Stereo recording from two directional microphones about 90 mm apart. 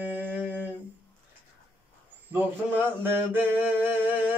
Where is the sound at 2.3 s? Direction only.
20° right (ahead or behind).